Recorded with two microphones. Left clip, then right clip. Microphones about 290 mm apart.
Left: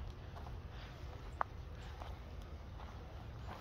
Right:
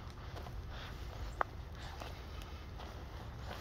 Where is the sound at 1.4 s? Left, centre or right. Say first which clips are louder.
Right 3 dB; right.